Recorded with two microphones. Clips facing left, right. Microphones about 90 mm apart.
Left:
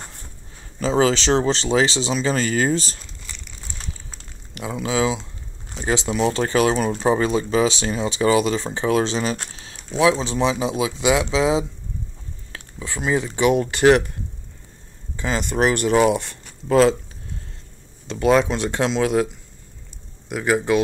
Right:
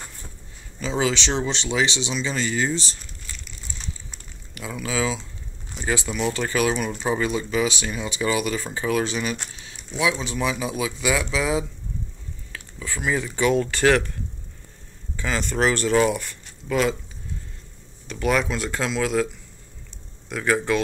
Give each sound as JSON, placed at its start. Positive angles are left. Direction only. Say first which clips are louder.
{"t": 0.7, "sound": "speech", "louder": "left 6 dB", "side_deg": 40}
{"t": 4.6, "sound": "speech", "louder": "left 4 dB", "side_deg": 25}
{"t": 12.7, "sound": "speech", "louder": "left 3 dB", "side_deg": 20}
{"t": 15.1, "sound": "speech", "louder": "left 2 dB", "side_deg": 30}
{"t": 15.5, "sound": "speech", "louder": "left 2 dB", "side_deg": 20}
{"t": 18.2, "sound": "speech", "louder": "left 5 dB", "side_deg": 25}
{"t": 20.2, "sound": "speech", "louder": "left 3 dB", "side_deg": 15}